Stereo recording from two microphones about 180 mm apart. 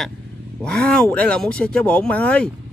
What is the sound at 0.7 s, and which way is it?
Speech, 5° left (ahead or behind).